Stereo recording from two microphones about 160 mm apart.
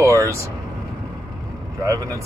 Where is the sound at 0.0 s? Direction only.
20° right (ahead or behind).